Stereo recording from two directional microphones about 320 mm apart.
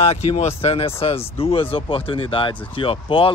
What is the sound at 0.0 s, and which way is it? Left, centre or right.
Speech, centre.